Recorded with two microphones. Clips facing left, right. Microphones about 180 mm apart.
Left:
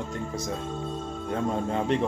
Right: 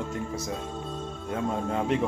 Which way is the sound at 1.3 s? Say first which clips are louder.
Left 1 dB; 5° right (ahead or behind).